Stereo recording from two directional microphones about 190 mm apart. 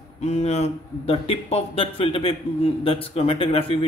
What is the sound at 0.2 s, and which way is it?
Speech, 35° left (ahead or behind).